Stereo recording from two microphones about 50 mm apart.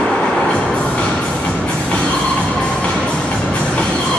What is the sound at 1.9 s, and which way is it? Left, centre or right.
Music, centre.